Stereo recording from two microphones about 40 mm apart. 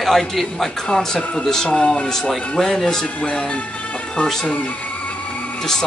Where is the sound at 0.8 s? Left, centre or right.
Centre.